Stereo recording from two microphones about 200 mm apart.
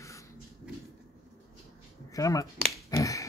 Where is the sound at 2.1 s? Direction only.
15° left (ahead or behind).